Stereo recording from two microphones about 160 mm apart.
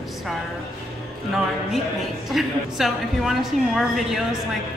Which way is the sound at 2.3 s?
Centre (ahead or behind).